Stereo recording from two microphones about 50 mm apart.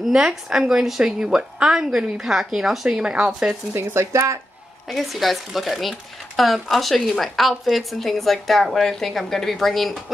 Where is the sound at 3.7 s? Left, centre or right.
Right.